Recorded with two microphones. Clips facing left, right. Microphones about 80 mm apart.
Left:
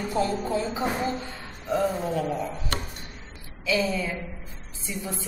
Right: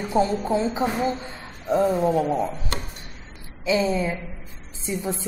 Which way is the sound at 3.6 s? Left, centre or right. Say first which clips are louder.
Right 4 dB; right.